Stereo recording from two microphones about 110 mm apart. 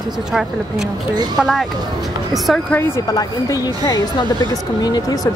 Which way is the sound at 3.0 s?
35° left (ahead or behind).